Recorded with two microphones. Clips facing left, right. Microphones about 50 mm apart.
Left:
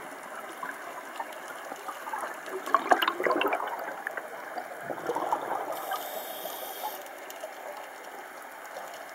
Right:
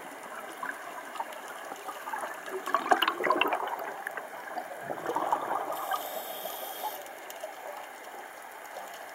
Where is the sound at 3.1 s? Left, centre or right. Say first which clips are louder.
Left 1 dB; right.